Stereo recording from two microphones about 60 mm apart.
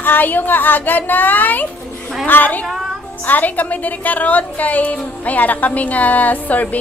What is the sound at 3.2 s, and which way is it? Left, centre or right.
Speech, left.